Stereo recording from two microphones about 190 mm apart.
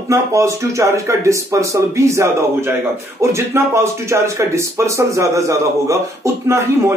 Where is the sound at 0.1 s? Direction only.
15° right (ahead or behind).